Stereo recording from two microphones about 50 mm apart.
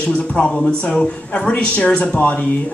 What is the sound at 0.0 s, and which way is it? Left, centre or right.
Speech, left.